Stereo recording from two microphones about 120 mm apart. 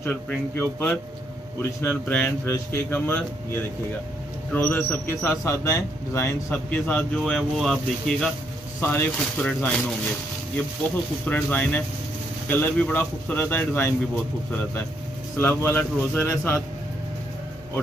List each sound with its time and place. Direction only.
0.0 s speech: 15° left (ahead or behind)
8.8 s speech: 15° left (ahead or behind)
11.2 s speech: 10° left (ahead or behind)
15.3 s speech: 15° left (ahead or behind)